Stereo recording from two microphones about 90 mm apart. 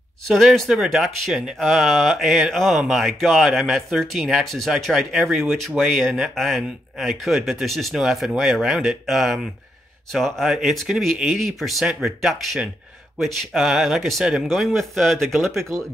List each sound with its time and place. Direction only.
0.3 s speech: centre (ahead or behind)